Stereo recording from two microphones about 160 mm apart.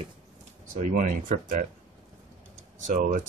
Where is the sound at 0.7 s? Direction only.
55° right (ahead or behind).